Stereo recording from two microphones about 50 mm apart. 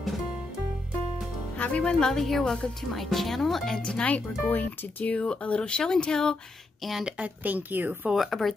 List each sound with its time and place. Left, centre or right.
1.6 s speech: left
2.0 s a woman's voice: centre
4.0 s speech: left
6.8 s speech: centre
7.4 s a woman's voice: right
8.2 s speech: centre